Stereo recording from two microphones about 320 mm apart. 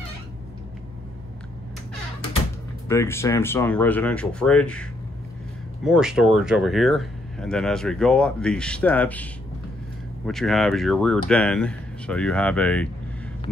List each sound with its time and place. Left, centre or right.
2.9 s speech: centre
5.9 s speech: centre